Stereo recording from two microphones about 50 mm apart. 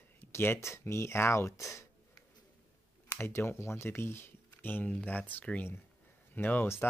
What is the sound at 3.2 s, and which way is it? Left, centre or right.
Speech, left.